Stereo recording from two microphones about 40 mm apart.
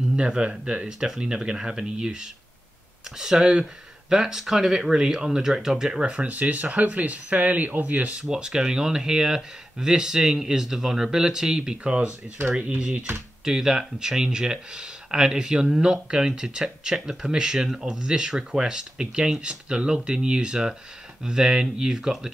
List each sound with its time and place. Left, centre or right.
0.1 s speech: right
5.9 s speech: right
6.2 s speech: right
8.2 s speech: centre
13.4 s speech: centre
21.9 s speech: centre